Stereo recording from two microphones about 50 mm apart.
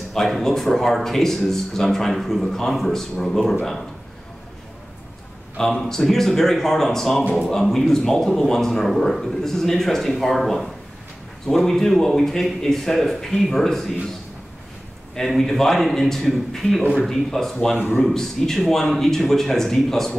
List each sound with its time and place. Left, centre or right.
0.1 s a man's voice: centre
5.6 s a man's voice: centre
15.2 s a man's voice: centre